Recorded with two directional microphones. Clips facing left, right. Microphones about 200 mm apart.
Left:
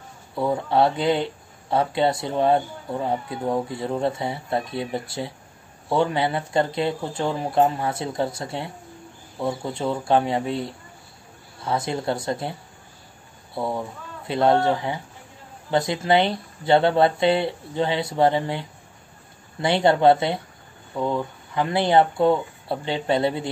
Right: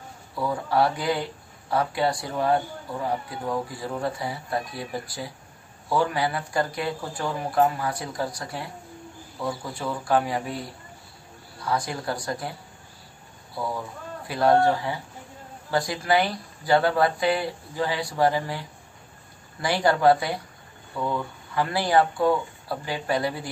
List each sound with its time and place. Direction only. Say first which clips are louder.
0.4 s speech: left 3 dB; 25° left (ahead or behind)
13.6 s speech: left 4 dB; 25° left (ahead or behind)